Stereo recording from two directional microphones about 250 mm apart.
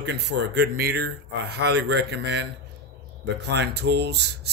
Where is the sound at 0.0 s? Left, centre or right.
Right.